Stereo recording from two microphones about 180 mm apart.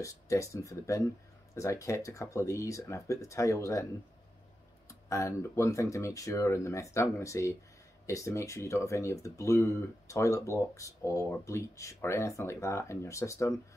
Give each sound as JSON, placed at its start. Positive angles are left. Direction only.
{"t": 0.0, "sound": "speech", "side_deg": 15}
{"t": 4.8, "sound": "speech", "side_deg": 15}